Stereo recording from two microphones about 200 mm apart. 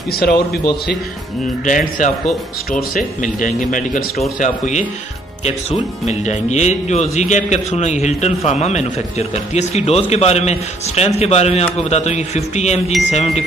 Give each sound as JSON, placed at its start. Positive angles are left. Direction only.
{"t": 0.1, "sound": "a man's voice", "side_deg": 50}
{"t": 1.7, "sound": "a man's voice", "side_deg": 40}